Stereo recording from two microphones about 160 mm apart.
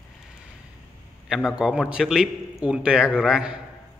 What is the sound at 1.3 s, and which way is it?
A man's voice, 5° right (ahead or behind).